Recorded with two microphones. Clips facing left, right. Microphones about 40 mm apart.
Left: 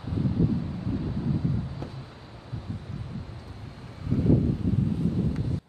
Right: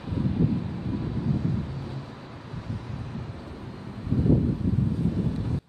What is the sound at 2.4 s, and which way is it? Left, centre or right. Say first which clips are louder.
Vehicle: right 1 dB; right.